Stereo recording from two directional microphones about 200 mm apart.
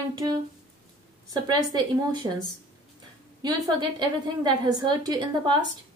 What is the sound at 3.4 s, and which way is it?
A woman's voice, 20° right (ahead or behind).